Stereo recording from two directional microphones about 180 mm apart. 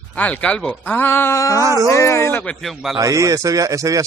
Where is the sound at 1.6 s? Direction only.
15° right (ahead or behind).